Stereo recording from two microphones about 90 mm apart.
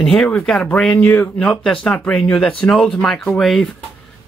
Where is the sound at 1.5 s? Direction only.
5° left (ahead or behind).